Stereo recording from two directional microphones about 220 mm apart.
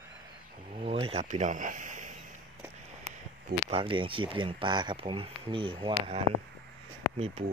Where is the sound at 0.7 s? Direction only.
25° right (ahead or behind).